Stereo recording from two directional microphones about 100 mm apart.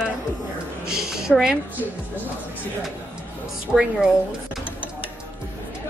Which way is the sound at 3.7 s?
5° left (ahead or behind).